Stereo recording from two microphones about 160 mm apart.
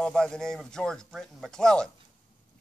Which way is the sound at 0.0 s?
5° left (ahead or behind).